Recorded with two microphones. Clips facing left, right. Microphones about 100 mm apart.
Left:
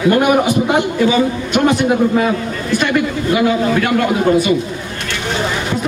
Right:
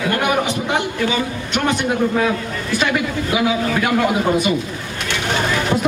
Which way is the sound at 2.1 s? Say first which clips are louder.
Left 3 dB; 5° left (ahead or behind).